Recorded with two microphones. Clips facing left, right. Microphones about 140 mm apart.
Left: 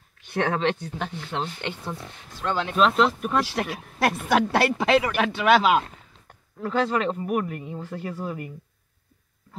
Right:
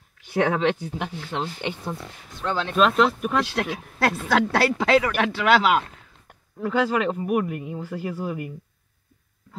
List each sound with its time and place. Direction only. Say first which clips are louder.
0.3 s speech: right 3 dB; 10° right (ahead or behind)
2.5 s a woman's voice: right 1 dB; 15° left (ahead or behind)
2.9 s speech: right 1 dB; centre (ahead or behind)
4.0 s a woman's voice: even; 10° left (ahead or behind)
6.6 s speech: right 1 dB; 10° right (ahead or behind)